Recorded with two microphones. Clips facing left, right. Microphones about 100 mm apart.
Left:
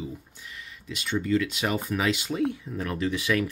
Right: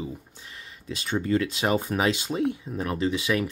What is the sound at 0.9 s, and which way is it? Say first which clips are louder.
Speech: right 1 dB; 40° right (ahead or behind).